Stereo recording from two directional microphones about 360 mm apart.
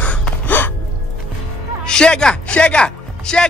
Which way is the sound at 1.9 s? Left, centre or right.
Centre.